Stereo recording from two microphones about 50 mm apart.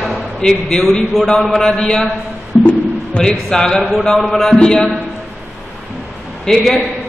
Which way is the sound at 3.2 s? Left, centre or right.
Left.